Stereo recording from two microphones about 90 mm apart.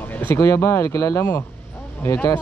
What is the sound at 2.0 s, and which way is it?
Speech, 20° left (ahead or behind).